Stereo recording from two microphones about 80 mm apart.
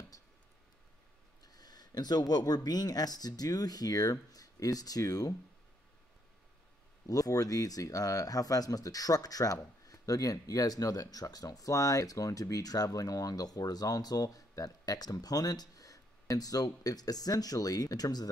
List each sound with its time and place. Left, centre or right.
1.4 s speech: left
7.1 s speech: left